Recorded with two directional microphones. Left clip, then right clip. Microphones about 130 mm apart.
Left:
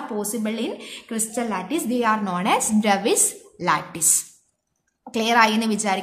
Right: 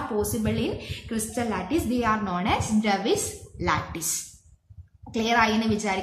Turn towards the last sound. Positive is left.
turn(degrees=50)  # may be behind; listen again after turning